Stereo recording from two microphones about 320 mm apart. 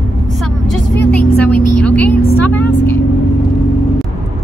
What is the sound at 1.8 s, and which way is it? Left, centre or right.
Vehicle, centre.